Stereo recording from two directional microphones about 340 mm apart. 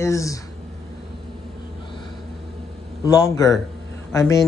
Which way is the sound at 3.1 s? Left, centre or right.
Centre.